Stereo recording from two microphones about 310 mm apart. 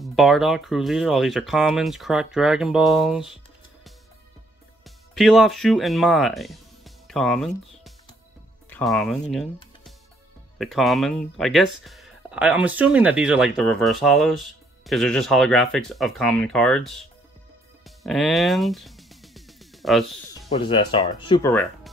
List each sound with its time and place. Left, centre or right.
0.0 s speech: centre
4.8 s speech: centre
10.6 s speech: centre
17.8 s music: centre
20.4 s speech: centre